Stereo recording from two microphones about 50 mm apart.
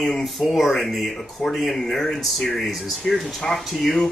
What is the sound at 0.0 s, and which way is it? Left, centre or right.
Speech, centre.